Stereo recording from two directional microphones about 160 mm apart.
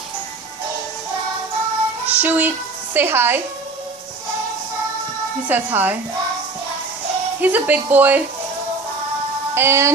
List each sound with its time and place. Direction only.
2.0 s a woman's voice: 10° right (ahead or behind)
5.5 s speech: 10° right (ahead or behind)
7.4 s speech: 10° right (ahead or behind)
9.5 s speech: 15° right (ahead or behind)